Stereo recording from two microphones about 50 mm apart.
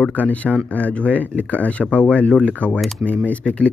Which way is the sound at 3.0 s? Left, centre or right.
Left.